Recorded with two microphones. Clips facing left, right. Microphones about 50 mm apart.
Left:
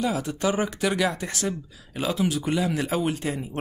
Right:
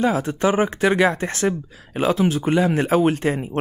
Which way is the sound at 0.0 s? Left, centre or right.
Right.